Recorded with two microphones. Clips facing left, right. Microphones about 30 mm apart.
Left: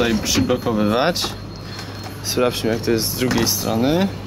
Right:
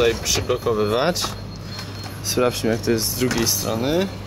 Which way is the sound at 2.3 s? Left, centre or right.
Centre.